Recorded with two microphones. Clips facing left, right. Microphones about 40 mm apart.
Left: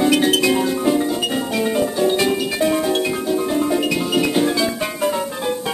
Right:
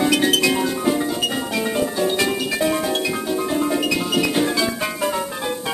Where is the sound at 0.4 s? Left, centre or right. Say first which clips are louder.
Left 2 dB; centre.